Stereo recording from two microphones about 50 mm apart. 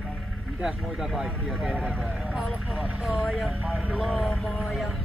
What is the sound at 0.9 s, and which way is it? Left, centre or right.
Speech, centre.